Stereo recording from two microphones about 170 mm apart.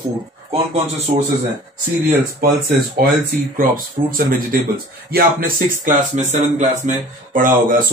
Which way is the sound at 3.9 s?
55° right (ahead or behind).